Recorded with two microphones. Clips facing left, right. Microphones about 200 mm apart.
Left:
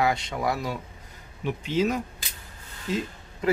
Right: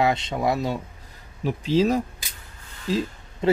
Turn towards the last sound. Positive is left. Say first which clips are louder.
# right 4 dB
turn(degrees=-30)  # may be behind; listen again after turning